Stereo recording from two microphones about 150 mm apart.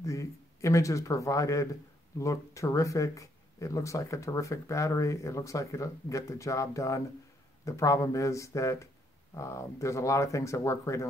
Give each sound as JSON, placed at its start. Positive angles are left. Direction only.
{"t": 0.0, "sound": "speech", "side_deg": 20}